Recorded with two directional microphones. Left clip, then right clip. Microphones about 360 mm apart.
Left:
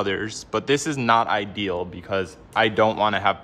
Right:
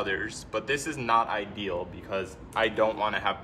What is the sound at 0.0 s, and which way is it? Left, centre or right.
A man's voice, centre.